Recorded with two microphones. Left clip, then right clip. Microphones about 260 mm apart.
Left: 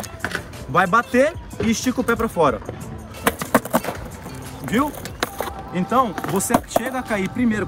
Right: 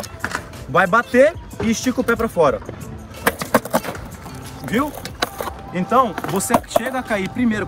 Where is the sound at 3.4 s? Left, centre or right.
Centre.